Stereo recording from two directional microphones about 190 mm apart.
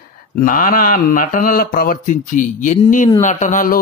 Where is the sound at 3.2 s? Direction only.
40° left (ahead or behind).